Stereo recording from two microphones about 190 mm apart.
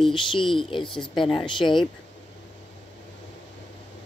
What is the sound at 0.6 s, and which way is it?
Speech, 25° left (ahead or behind).